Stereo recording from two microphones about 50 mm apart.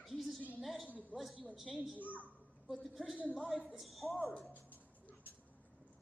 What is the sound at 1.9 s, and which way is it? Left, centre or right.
Speech, left.